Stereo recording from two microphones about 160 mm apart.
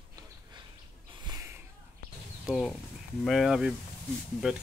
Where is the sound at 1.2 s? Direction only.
20° right (ahead or behind).